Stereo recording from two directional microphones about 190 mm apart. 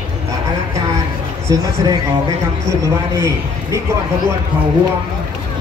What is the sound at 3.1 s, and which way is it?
Speech, 15° right (ahead or behind).